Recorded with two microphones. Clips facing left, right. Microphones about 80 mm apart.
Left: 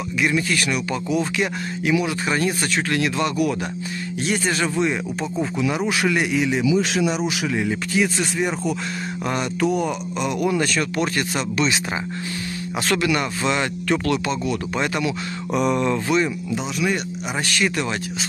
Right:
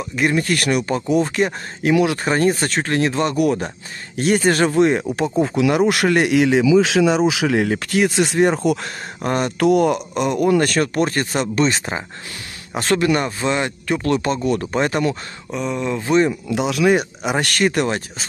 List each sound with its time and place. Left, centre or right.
0.2 s speech: right
2.2 s speech: right
5.9 s a man's voice: right
7.4 s a man's voice: right
9.2 s speech: right
9.6 s speech: right
13.5 s speech: right
14.3 s speech: right
15.5 s a sound: centre
16.1 s speech: right
16.4 s speech: right